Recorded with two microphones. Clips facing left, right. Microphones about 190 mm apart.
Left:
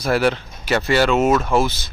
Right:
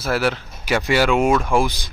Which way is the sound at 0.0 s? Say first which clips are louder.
Left 3 dB; 5° right (ahead or behind).